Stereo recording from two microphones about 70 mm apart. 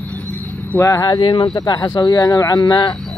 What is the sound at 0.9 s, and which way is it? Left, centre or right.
Speech, left.